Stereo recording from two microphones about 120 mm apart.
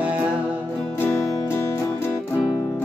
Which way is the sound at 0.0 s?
15° right (ahead or behind).